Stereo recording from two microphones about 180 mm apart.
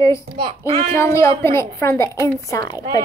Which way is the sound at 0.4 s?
30° right (ahead or behind).